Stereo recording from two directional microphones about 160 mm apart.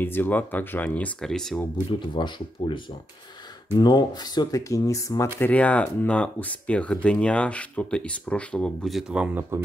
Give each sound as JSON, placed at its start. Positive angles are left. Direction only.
{"t": 0.0, "sound": "speech", "side_deg": 10}
{"t": 1.9, "sound": "speech", "side_deg": 30}